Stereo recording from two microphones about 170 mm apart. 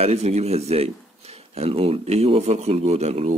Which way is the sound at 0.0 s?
40° right (ahead or behind).